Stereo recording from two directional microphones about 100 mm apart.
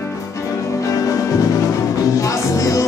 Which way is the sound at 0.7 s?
35° left (ahead or behind).